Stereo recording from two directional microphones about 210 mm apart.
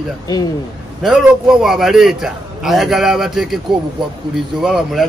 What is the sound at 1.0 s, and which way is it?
A man's voice, centre (ahead or behind).